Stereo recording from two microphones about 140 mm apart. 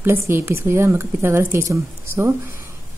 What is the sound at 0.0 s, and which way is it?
A woman's voice, 15° right (ahead or behind).